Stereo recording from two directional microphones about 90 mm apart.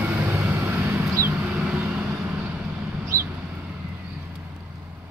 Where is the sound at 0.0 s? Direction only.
25° right (ahead or behind).